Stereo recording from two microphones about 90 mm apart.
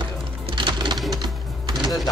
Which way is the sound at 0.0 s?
60° right (ahead or behind).